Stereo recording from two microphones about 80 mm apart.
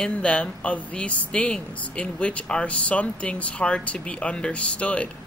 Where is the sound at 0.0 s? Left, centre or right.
Centre.